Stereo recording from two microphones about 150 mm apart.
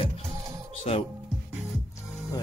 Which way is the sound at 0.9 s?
45° left (ahead or behind).